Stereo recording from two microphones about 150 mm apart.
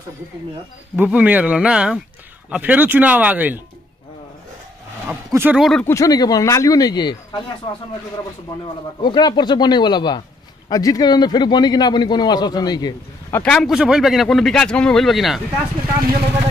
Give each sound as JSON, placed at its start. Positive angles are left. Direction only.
{"t": 0.9, "sound": "speech", "side_deg": -10}
{"t": 5.0, "sound": "speech", "side_deg": -15}
{"t": 5.6, "sound": "speech", "side_deg": 0}
{"t": 5.9, "sound": "a man's voice", "side_deg": 20}
{"t": 9.0, "sound": "a man's voice", "side_deg": 30}
{"t": 13.3, "sound": "speech", "side_deg": 5}